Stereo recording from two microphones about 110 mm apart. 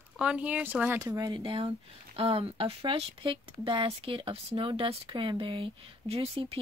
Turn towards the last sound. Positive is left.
turn(degrees=-55)  # may be behind; listen again after turning